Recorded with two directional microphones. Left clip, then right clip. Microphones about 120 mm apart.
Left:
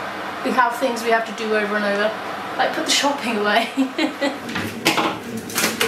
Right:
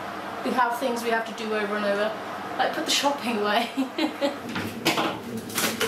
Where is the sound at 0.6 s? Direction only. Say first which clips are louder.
Left 6 dB; 5° left (ahead or behind).